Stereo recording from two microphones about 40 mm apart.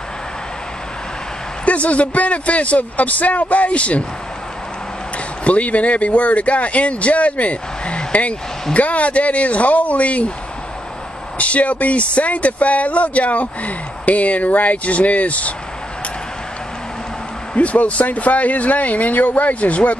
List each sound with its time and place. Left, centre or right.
1.7 s speech: left
5.4 s speech: left
11.3 s speech: left
17.6 s speech: left